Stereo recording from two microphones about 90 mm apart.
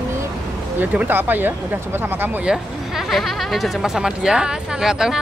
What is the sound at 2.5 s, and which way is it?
Speech, centre (ahead or behind).